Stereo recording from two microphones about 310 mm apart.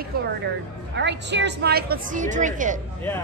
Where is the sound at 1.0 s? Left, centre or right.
Right.